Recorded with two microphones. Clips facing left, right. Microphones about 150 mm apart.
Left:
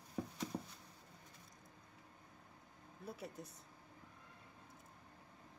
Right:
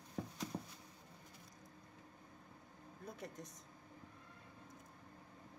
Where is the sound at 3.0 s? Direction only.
5° left (ahead or behind).